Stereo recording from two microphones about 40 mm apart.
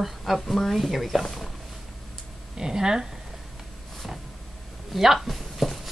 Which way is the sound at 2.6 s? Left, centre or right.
Centre.